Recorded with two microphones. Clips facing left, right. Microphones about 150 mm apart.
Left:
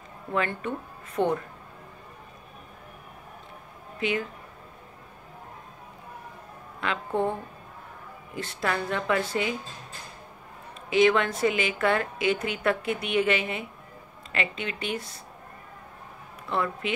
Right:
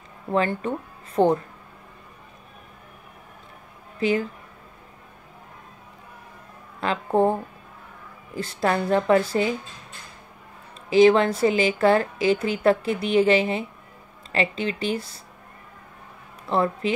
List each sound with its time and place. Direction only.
0.3 s a woman's voice: 30° right (ahead or behind)
4.0 s a woman's voice: 35° right (ahead or behind)
6.8 s a woman's voice: 35° right (ahead or behind)
8.4 s a woman's voice: 35° right (ahead or behind)
10.9 s a woman's voice: 35° right (ahead or behind)
16.4 s a woman's voice: 35° right (ahead or behind)